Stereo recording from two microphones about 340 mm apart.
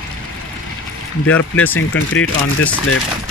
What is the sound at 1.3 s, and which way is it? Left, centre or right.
Speech, centre.